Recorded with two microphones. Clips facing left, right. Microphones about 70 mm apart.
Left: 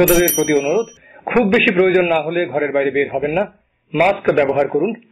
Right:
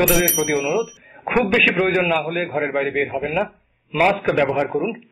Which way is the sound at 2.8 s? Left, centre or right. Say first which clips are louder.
Left 5 dB; left.